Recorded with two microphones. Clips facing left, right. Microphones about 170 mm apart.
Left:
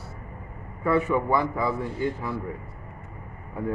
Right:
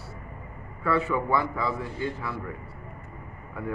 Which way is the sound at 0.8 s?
15° left (ahead or behind).